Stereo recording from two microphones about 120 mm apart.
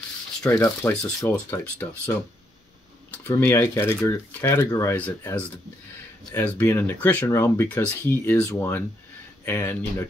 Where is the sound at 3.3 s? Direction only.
20° left (ahead or behind).